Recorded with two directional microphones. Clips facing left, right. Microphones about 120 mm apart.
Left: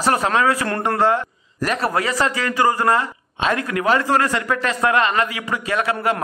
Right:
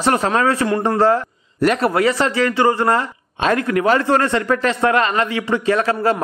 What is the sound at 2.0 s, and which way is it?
Speech, 30° right (ahead or behind).